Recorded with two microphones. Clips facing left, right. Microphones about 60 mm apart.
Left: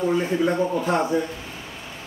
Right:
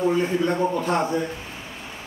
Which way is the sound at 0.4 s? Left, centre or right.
Centre.